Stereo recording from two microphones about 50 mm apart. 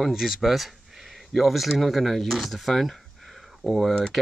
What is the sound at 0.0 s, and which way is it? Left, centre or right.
Speech, centre.